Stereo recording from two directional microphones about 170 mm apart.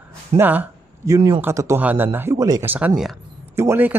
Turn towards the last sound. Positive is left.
turn(degrees=-15)  # may be behind; listen again after turning